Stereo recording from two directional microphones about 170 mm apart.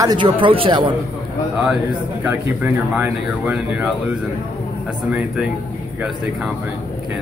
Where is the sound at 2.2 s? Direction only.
10° right (ahead or behind).